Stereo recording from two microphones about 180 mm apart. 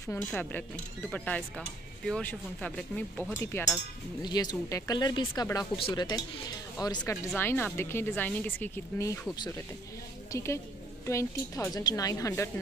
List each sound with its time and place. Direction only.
0.1 s speech: 10° left (ahead or behind)
4.2 s speech: 20° left (ahead or behind)